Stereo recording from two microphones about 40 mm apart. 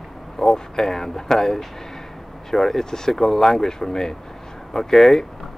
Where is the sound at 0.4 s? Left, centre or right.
Centre.